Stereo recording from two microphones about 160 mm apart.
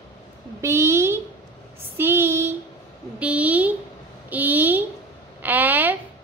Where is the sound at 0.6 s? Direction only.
15° right (ahead or behind).